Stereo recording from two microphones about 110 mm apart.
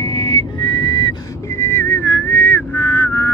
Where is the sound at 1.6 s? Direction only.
25° left (ahead or behind).